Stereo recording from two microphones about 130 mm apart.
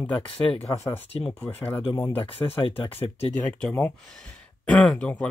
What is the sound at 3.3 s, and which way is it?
Speech, 10° left (ahead or behind).